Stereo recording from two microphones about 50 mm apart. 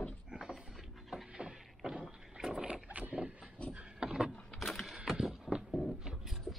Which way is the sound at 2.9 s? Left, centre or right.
Right.